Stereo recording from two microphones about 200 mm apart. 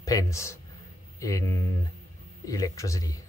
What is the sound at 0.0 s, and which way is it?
Speech, 15° left (ahead or behind).